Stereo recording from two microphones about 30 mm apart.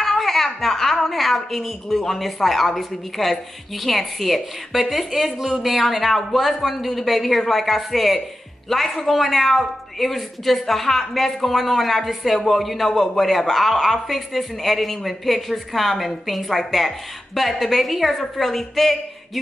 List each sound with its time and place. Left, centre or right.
0.0 s a man's voice: centre